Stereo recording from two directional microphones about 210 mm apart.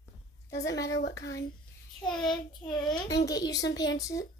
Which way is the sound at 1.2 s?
15° left (ahead or behind).